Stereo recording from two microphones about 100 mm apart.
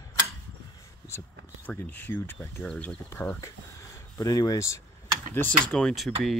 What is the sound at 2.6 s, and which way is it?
Speech, 10° left (ahead or behind).